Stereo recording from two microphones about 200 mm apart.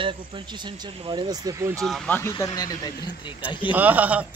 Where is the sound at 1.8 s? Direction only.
5° left (ahead or behind).